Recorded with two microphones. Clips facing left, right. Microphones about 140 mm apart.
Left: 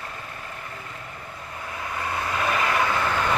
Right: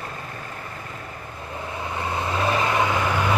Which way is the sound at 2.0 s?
25° right (ahead or behind).